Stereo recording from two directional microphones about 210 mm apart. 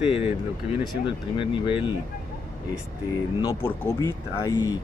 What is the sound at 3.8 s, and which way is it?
Speech, 15° left (ahead or behind).